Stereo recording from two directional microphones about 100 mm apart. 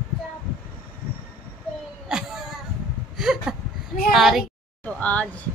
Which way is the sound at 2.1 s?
5° right (ahead or behind).